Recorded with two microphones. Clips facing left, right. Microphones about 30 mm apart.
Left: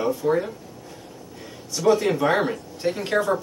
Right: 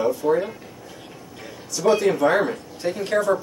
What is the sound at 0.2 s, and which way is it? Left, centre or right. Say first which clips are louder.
Speech: right 1 dB; centre.